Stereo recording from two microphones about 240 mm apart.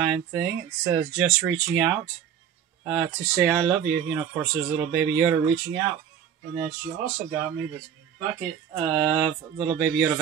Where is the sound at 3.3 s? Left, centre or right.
Centre.